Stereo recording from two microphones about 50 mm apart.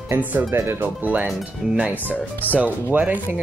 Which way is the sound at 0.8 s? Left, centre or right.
Right.